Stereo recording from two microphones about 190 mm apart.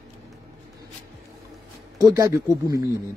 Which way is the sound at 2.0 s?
15° right (ahead or behind).